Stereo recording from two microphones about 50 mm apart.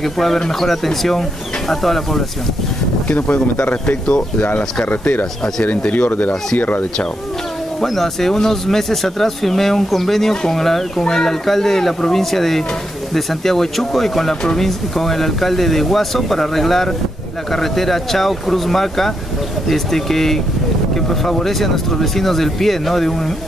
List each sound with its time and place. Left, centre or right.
0.0 s speech: centre
3.1 s speech: left
5.6 s speech: left
7.8 s speech: centre